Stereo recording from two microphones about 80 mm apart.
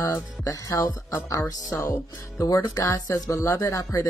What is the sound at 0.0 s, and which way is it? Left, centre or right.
Speech, left.